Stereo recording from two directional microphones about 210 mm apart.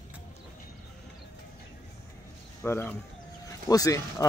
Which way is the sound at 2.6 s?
10° left (ahead or behind).